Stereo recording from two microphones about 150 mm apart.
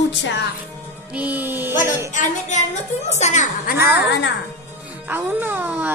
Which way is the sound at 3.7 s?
90° left.